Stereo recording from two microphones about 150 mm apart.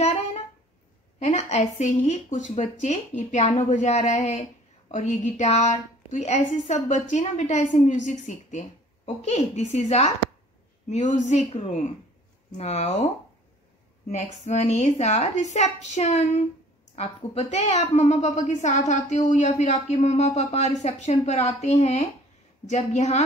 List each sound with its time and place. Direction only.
0.0 s music: 45° left (ahead or behind)
1.2 s a woman's voice: 50° left (ahead or behind)
14.1 s a woman's voice: 50° left (ahead or behind)